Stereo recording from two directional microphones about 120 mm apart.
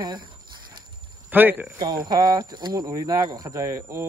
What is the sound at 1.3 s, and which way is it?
Speech, 15° right (ahead or behind).